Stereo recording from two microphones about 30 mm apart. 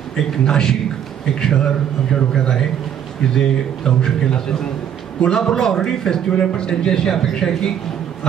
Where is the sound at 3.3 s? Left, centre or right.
Centre.